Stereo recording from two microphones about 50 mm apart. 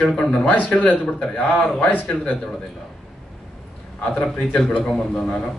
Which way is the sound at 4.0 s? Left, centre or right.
Centre.